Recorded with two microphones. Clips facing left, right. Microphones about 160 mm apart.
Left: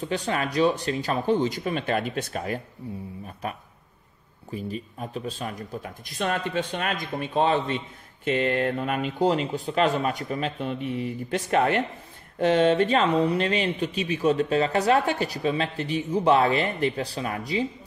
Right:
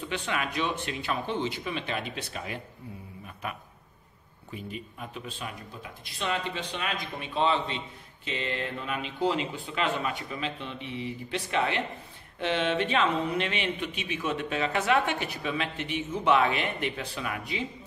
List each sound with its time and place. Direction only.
0.1 s speech: 40° left (ahead or behind)
2.8 s speech: 30° left (ahead or behind)
4.5 s speech: 35° left (ahead or behind)